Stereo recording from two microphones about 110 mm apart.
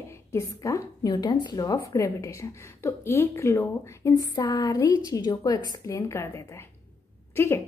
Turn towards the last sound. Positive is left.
turn(degrees=25)  # may be behind; listen again after turning